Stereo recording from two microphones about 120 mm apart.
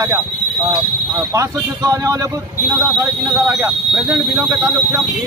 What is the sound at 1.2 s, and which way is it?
Speech, 30° right (ahead or behind).